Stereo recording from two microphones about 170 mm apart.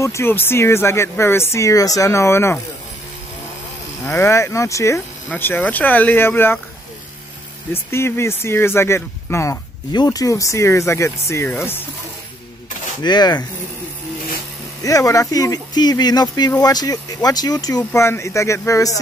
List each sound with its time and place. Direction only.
0.0 s speech: 15° left (ahead or behind)
4.0 s speech: 15° left (ahead or behind)
7.7 s speech: 15° left (ahead or behind)
13.0 s speech: 25° left (ahead or behind)
14.8 s speech: 20° left (ahead or behind)